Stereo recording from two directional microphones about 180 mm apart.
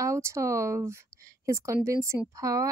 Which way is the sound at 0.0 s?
15° right (ahead or behind).